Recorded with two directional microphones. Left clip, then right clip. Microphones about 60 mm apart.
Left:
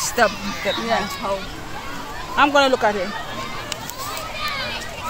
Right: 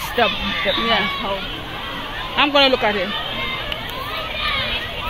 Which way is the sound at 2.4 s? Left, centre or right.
Left.